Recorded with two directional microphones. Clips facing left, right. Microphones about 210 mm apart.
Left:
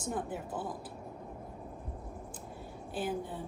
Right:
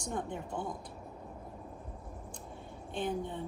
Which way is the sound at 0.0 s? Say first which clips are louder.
Left 1 dB; 5° left (ahead or behind).